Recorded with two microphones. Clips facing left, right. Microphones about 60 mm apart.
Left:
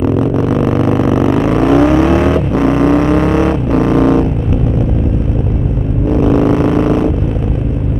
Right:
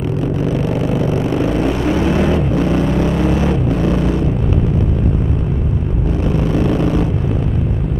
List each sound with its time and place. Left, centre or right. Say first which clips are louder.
0.7 s vehicle: left 6 dB; left
2.0 s vehicle: left 4 dB; left